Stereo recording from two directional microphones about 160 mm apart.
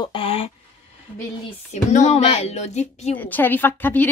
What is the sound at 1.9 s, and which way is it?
Speech, 45° left (ahead or behind).